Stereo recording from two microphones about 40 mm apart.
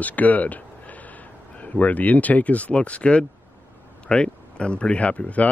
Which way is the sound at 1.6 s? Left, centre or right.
Left.